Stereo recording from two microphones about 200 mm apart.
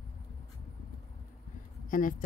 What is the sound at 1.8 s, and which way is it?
Speech, 40° left (ahead or behind).